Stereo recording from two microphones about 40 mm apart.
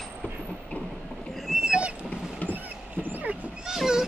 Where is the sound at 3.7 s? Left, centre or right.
Centre.